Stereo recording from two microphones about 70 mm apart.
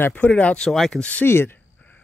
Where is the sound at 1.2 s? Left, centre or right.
Left.